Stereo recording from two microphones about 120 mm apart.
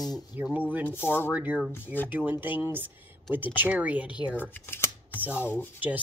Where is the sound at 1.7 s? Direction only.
15° left (ahead or behind).